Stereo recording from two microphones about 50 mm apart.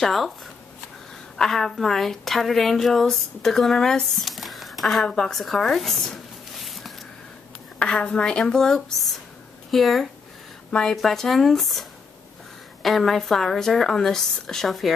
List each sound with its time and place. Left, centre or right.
0.0 s a woman's voice: centre
1.3 s a woman's voice: centre
5.0 s speech: centre
7.8 s a woman's voice: centre
10.7 s a woman's voice: centre
11.0 s a woman's voice: centre
12.8 s a woman's voice: centre